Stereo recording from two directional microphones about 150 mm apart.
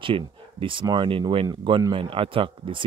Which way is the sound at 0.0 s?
35° right (ahead or behind).